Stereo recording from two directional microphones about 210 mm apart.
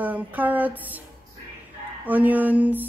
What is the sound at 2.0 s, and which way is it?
Speech, 10° right (ahead or behind).